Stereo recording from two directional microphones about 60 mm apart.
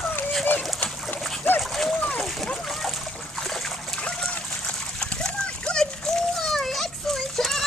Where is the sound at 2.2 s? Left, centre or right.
Centre.